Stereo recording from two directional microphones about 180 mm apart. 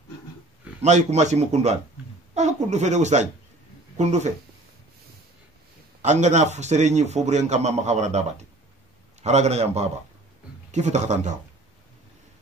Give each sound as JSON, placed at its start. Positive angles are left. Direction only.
{"t": 0.8, "sound": "a man's voice", "side_deg": -40}
{"t": 6.0, "sound": "a man's voice", "side_deg": -40}